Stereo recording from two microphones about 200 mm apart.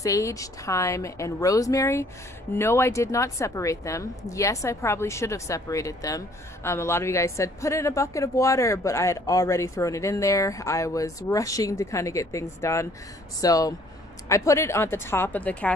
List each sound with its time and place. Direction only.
0.0 s a woman's voice: 15° left (ahead or behind)